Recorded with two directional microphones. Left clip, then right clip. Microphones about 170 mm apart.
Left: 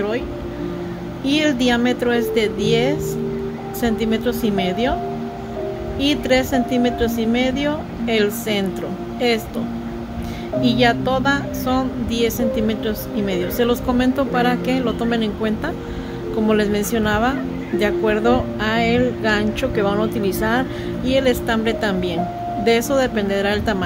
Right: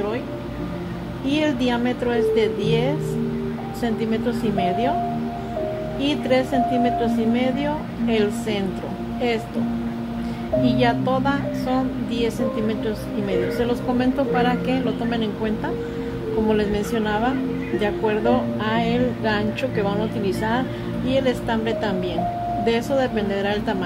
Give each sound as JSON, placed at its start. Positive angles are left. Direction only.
{"t": 1.2, "sound": "speech", "side_deg": 50}
{"t": 5.9, "sound": "speech", "side_deg": 50}
{"t": 10.6, "sound": "speech", "side_deg": 45}